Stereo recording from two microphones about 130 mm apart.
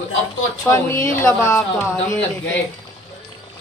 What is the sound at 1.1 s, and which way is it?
Speech, 20° left (ahead or behind).